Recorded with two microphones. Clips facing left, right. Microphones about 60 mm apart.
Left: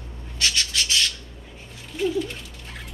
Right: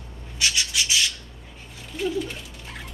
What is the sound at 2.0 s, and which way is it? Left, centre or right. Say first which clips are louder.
Dog: left 2 dB; centre.